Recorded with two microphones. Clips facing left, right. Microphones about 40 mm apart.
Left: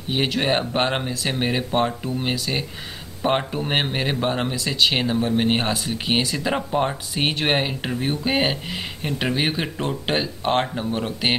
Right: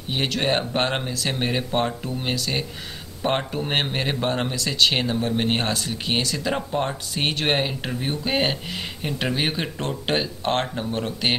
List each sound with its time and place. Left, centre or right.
0.1 s speech: centre